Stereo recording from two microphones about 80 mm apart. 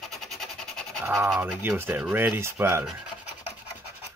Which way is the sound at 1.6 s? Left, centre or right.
Right.